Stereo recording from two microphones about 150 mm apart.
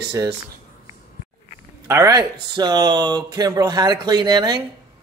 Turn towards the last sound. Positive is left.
turn(degrees=-30)  # may be behind; listen again after turning